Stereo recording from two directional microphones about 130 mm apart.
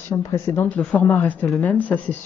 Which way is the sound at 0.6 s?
10° left (ahead or behind).